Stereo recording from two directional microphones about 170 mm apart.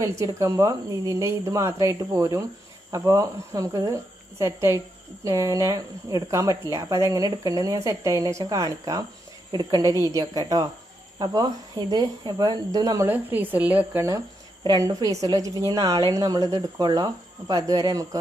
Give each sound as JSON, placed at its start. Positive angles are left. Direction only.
{"t": 0.0, "sound": "speech", "side_deg": -15}